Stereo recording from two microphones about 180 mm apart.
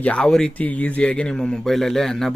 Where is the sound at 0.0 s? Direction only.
5° left (ahead or behind).